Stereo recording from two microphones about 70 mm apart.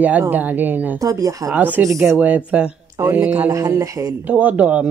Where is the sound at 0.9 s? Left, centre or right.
Right.